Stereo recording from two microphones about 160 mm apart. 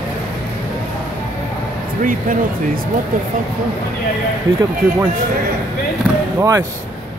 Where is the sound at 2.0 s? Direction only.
55° right (ahead or behind).